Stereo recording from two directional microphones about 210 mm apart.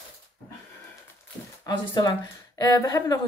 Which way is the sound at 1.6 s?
20° left (ahead or behind).